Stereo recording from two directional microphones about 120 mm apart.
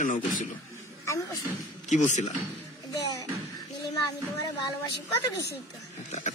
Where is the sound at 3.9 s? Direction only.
30° left (ahead or behind).